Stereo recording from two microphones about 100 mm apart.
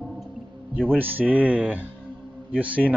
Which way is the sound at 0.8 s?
20° right (ahead or behind).